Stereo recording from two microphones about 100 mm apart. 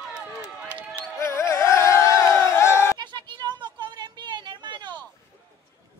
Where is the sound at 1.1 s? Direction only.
30° left (ahead or behind).